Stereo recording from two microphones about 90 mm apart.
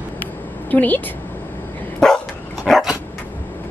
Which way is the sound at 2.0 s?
5° left (ahead or behind).